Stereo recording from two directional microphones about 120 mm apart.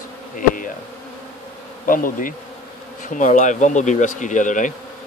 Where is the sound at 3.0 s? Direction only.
90° left.